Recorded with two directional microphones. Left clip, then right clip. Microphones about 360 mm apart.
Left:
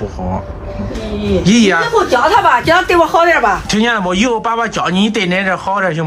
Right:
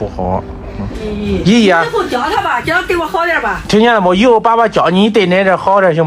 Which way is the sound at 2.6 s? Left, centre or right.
Centre.